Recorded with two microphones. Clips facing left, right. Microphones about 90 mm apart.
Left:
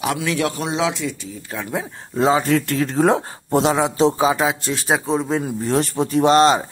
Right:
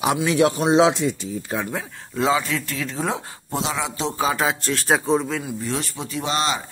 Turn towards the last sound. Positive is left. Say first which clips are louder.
# left 10 dB
turn(degrees=45)  # may be behind; listen again after turning